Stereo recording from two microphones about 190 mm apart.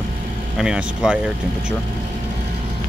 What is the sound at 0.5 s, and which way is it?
Speech, 5° right (ahead or behind).